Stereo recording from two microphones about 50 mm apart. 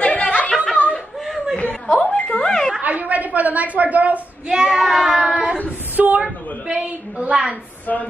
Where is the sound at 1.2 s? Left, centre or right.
Centre.